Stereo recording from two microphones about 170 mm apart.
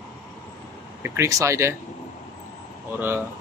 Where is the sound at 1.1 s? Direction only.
15° right (ahead or behind).